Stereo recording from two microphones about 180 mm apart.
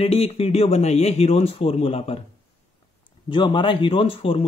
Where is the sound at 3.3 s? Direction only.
25° left (ahead or behind).